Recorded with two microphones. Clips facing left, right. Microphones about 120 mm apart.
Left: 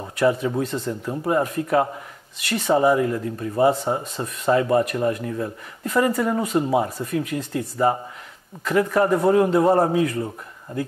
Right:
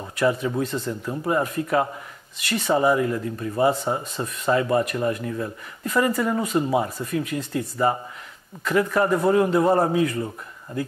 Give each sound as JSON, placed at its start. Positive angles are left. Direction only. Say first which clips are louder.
{"t": 0.2, "sound": "speech", "louder": "left 2 dB", "side_deg": 40}
{"t": 0.7, "sound": "speech", "louder": "left 1 dB", "side_deg": 30}
{"t": 1.2, "sound": "speech", "louder": "left 2 dB", "side_deg": 40}
{"t": 3.7, "sound": "speech", "louder": "left 1 dB", "side_deg": 25}
{"t": 9.7, "sound": "speech", "louder": "left 2 dB", "side_deg": 30}
{"t": 9.9, "sound": "speech", "louder": "left 1 dB", "side_deg": 45}